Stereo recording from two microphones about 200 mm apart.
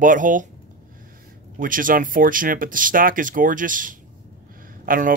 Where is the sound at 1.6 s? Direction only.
45° right (ahead or behind).